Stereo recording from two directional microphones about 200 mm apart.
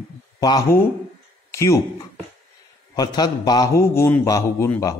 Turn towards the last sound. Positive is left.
turn(degrees=15)  # may be behind; listen again after turning